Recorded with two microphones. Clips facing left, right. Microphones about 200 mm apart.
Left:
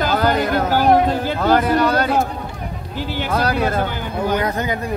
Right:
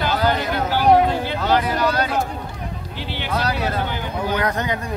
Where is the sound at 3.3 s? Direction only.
55° left (ahead or behind).